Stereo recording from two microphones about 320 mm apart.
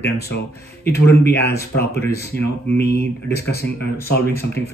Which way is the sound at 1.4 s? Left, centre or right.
Centre.